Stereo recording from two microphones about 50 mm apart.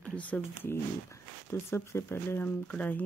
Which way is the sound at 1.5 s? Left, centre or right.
Left.